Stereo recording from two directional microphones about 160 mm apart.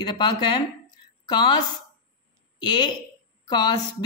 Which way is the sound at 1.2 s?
30° left (ahead or behind).